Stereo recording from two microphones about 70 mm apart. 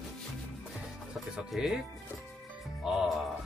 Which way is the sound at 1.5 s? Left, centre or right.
Centre.